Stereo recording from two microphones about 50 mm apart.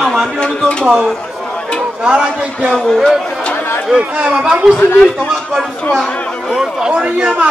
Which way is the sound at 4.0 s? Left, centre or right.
Right.